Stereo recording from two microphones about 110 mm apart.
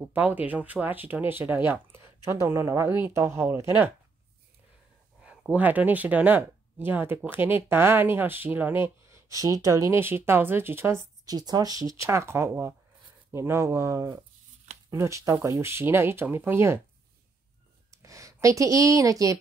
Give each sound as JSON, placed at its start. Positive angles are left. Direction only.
{"t": 0.0, "sound": "speech", "side_deg": -15}
{"t": 5.2, "sound": "speech", "side_deg": -10}
{"t": 9.0, "sound": "speech", "side_deg": -30}
{"t": 11.2, "sound": "speech", "side_deg": -35}
{"t": 17.9, "sound": "speech", "side_deg": -30}